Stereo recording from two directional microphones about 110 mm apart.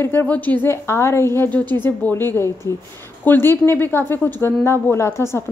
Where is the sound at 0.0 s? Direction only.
20° left (ahead or behind).